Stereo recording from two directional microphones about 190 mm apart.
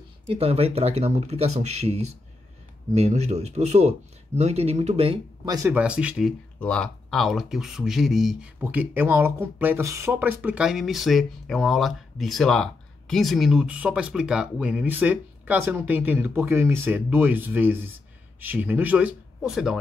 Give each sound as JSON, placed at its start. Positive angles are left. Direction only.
{"t": 0.3, "sound": "speech", "side_deg": -30}
{"t": 5.7, "sound": "speech", "side_deg": -5}